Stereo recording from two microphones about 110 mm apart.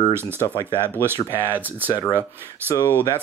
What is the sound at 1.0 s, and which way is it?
Speech, 20° right (ahead or behind).